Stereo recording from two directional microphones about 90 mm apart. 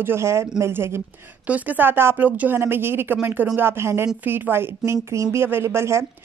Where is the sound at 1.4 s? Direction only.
20° right (ahead or behind).